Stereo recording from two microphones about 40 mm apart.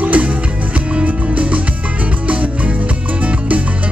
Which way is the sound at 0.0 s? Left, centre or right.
Right.